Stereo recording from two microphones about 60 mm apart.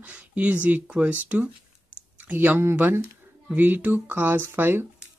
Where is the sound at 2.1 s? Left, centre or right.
Right.